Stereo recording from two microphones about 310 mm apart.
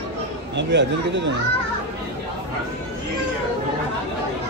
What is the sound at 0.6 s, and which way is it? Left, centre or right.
Speech, right.